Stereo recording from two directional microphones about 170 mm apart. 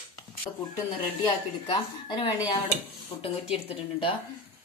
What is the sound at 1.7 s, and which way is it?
Speech, 25° left (ahead or behind).